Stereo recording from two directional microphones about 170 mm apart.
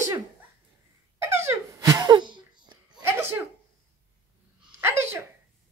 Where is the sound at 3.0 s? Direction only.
15° right (ahead or behind).